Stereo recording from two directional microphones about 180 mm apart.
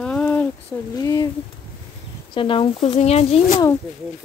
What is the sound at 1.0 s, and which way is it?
Speech, 20° left (ahead or behind).